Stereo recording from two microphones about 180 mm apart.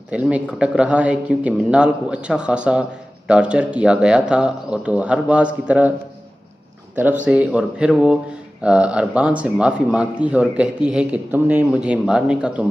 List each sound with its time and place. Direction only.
0.1 s speech: 5° right (ahead or behind)
7.2 s speech: 5° right (ahead or behind)